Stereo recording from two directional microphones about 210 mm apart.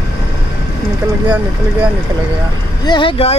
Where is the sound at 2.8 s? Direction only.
20° left (ahead or behind).